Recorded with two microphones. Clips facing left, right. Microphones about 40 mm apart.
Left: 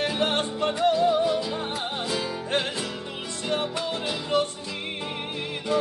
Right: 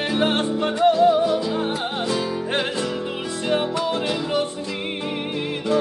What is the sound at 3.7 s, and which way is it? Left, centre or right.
Music, centre.